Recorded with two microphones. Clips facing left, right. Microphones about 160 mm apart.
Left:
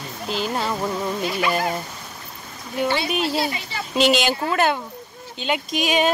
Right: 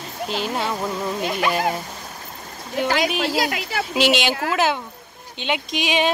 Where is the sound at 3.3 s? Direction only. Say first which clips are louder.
Right 2 dB; 90° right.